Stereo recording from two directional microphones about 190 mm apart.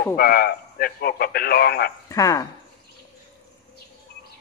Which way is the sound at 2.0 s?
20° left (ahead or behind).